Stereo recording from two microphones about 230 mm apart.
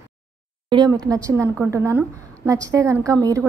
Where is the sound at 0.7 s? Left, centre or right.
Centre.